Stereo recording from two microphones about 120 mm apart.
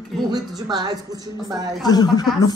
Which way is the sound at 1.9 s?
35° left (ahead or behind).